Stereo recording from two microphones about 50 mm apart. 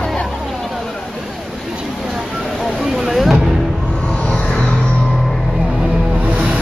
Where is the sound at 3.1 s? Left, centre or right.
Centre.